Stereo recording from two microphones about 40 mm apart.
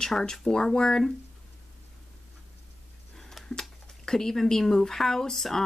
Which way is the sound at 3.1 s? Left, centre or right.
Centre.